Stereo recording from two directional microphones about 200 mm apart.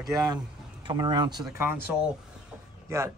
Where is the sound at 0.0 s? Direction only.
20° right (ahead or behind).